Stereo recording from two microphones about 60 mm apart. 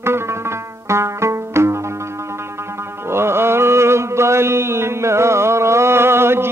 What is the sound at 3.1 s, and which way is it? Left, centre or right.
Mantra, right.